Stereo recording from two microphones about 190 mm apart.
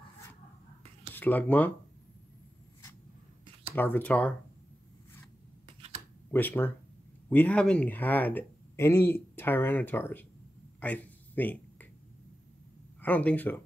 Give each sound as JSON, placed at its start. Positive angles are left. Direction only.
{"t": 1.1, "sound": "speech", "side_deg": 10}
{"t": 3.7, "sound": "speech", "side_deg": 10}
{"t": 5.8, "sound": "a sound", "side_deg": -30}
{"t": 6.3, "sound": "speech", "side_deg": 10}
{"t": 10.8, "sound": "a sound", "side_deg": 10}
{"t": 13.0, "sound": "speech", "side_deg": 5}